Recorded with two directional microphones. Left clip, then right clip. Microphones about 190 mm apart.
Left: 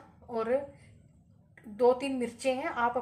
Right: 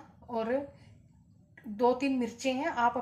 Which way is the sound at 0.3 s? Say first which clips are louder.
Left 2 dB; 15° left (ahead or behind).